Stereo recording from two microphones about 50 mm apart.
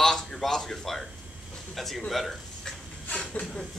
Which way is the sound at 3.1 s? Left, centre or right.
Left.